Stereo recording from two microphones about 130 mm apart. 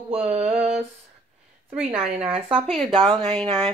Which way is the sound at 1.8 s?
50° right (ahead or behind).